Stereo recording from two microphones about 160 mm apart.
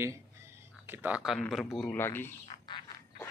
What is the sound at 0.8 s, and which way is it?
Speech, 10° right (ahead or behind).